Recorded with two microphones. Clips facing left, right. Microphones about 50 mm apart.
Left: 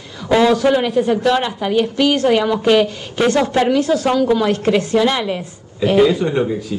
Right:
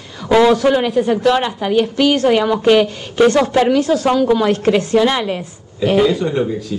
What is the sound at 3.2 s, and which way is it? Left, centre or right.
A woman's voice, centre.